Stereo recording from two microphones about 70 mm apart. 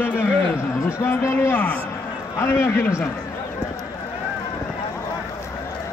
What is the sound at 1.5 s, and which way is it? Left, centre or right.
Speech, left.